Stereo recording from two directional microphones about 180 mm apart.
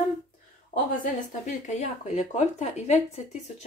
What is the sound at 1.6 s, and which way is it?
Speech, 40° left (ahead or behind).